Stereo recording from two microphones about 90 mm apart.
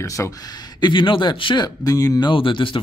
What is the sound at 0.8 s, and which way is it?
Speech, 65° left (ahead or behind).